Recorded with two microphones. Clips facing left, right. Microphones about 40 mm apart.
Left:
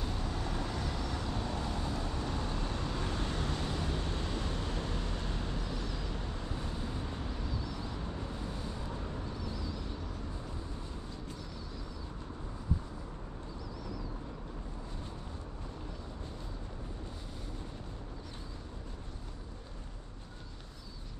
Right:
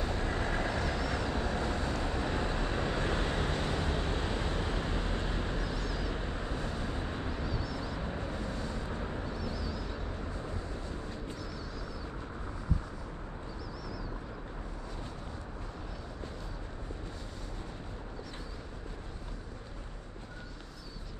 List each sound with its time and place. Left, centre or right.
0.0 s vehicle: right
1.3 s vehicle: right
8.5 s vehicle: right
8.8 s vehicle: right
9.5 s vehicle: centre
9.9 s vehicle: right